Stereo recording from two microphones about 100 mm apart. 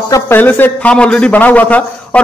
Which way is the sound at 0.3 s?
20° left (ahead or behind).